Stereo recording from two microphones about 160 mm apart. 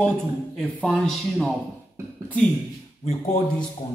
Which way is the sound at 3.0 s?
40° left (ahead or behind).